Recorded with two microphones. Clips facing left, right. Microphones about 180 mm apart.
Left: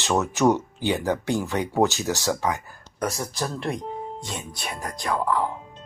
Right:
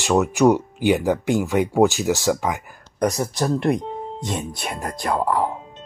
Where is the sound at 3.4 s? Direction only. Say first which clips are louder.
Right 10 dB; 55° right (ahead or behind).